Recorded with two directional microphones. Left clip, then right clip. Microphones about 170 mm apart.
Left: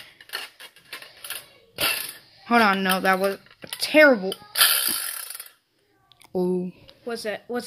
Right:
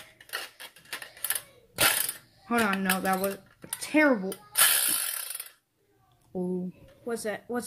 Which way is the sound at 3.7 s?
55° left (ahead or behind).